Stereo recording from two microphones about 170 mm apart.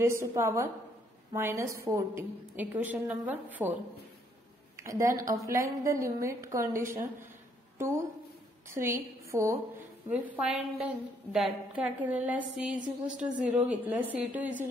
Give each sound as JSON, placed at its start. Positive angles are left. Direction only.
{"t": 0.0, "sound": "a woman's voice", "side_deg": -15}
{"t": 4.7, "sound": "a woman's voice", "side_deg": -20}
{"t": 8.6, "sound": "a woman's voice", "side_deg": -15}